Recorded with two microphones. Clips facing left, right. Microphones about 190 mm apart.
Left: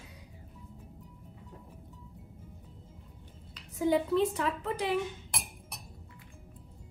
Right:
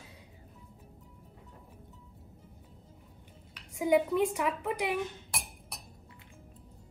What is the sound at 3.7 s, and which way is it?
A woman's voice, 15° right (ahead or behind).